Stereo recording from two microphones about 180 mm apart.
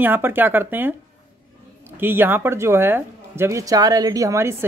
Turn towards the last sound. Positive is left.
turn(degrees=-15)  # may be behind; listen again after turning